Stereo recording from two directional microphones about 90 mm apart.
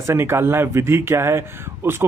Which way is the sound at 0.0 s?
30° right (ahead or behind).